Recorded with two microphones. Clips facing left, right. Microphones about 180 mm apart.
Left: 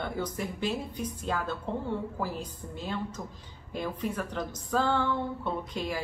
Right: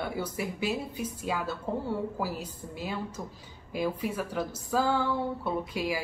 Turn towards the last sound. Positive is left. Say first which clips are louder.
# right 2 dB
turn(degrees=-10)  # may be behind; listen again after turning